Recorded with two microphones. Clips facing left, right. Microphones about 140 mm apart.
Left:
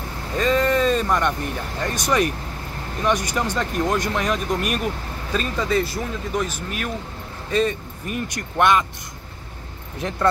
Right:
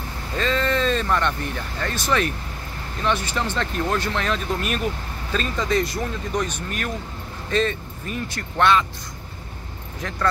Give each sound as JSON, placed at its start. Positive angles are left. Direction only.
{"t": 0.4, "sound": "a sound", "side_deg": 10}
{"t": 1.8, "sound": "speech", "side_deg": 15}
{"t": 10.0, "sound": "speech", "side_deg": 20}